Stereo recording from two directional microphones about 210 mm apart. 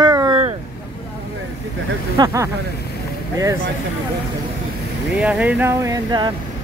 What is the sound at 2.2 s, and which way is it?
Speech, 15° right (ahead or behind).